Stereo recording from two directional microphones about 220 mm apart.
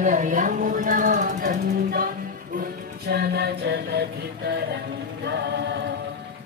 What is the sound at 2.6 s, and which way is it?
Music, 45° right (ahead or behind).